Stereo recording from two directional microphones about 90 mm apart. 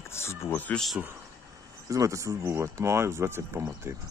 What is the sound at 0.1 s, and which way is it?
Speech, 30° left (ahead or behind).